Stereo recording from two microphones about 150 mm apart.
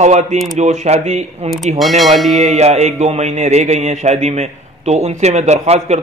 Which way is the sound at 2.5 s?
50° right (ahead or behind).